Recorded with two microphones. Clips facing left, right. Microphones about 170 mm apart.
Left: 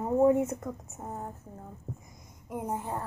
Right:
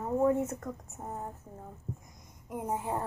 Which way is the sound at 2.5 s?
Centre (ahead or behind).